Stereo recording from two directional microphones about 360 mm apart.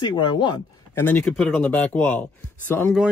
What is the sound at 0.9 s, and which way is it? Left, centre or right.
Speech, centre.